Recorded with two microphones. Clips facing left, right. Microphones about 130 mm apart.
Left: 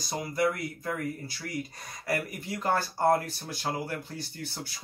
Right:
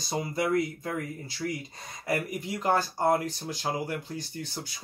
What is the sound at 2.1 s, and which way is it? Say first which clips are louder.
Speech: right 2 dB; 20° right (ahead or behind).